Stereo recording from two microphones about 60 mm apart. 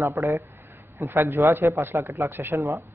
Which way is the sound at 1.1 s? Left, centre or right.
Right.